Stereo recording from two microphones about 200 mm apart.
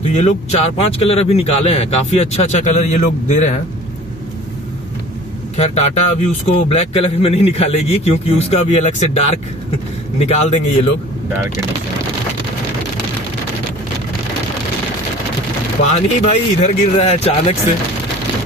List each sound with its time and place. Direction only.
0.1 s speech: 35° left (ahead or behind)
5.6 s speech: 35° left (ahead or behind)
15.9 s speech: 35° left (ahead or behind)